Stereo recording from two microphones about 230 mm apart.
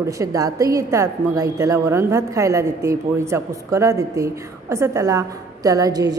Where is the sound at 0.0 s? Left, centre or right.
Centre.